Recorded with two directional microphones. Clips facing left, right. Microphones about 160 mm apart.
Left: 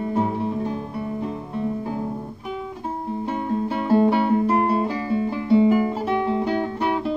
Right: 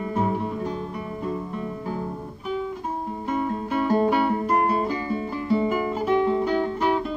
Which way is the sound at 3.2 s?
30° left (ahead or behind).